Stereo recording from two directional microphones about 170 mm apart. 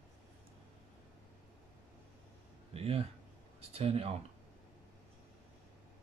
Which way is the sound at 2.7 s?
35° right (ahead or behind).